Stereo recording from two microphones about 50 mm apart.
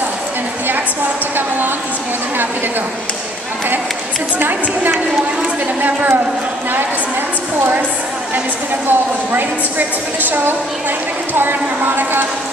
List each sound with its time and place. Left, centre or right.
4.4 s a woman's voice: right
8.8 s a woman's voice: right